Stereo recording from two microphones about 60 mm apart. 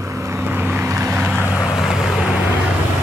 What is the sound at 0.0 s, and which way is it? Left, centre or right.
Vehicle, right.